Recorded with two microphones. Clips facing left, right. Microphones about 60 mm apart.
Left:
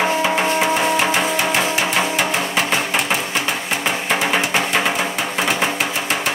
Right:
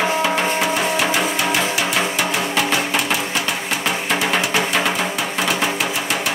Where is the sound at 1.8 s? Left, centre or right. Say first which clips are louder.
Left 1 dB; left.